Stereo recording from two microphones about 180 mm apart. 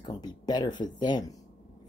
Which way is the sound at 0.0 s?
20° left (ahead or behind).